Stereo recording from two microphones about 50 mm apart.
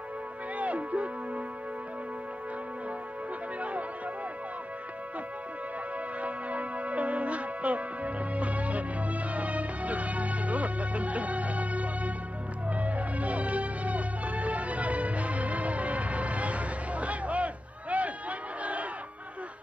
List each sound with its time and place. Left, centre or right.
0.6 s music: right
6.2 s music: right
18.6 s crowd: right